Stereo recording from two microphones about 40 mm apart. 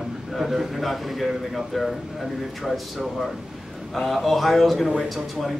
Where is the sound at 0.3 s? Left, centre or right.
Centre.